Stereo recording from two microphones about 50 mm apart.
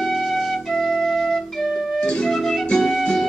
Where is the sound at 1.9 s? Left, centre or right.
Left.